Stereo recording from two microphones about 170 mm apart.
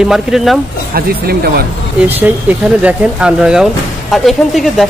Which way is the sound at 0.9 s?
60° right (ahead or behind).